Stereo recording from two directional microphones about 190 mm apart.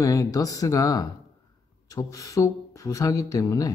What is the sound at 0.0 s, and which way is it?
Speech, 15° left (ahead or behind).